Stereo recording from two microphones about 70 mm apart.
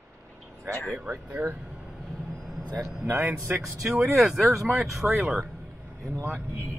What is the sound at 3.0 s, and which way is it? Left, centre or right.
Speech, right.